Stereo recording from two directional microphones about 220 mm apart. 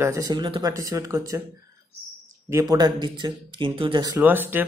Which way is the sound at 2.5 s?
20° right (ahead or behind).